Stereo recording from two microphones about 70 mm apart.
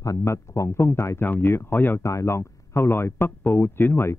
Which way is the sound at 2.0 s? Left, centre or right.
Left.